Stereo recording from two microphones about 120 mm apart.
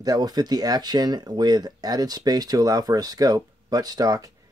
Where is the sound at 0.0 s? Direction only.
35° right (ahead or behind).